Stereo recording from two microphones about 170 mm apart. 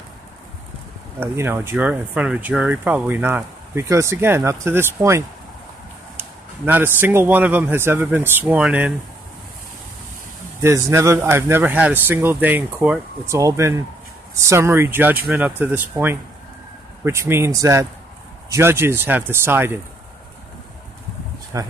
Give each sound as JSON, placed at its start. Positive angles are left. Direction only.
{"t": 1.2, "sound": "speech", "side_deg": -15}
{"t": 10.6, "sound": "speech", "side_deg": -15}
{"t": 21.5, "sound": "speech", "side_deg": -20}